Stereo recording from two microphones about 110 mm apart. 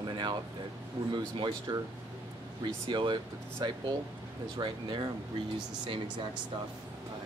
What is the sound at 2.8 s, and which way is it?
Speech, 45° right (ahead or behind).